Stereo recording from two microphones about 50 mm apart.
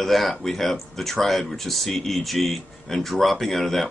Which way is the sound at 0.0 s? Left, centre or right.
Centre.